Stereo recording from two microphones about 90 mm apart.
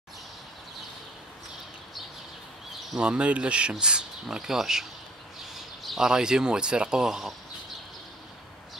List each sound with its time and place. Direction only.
2.9 s speech: 10° right (ahead or behind)
5.9 s speech: 5° right (ahead or behind)